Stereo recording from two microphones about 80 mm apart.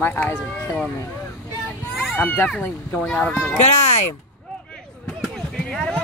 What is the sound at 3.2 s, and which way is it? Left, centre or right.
Speech, centre.